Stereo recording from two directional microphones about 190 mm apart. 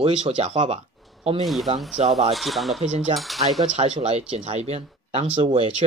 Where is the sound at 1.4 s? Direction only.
Centre (ahead or behind).